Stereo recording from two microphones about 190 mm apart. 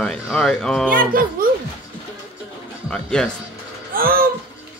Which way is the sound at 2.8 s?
5° left (ahead or behind).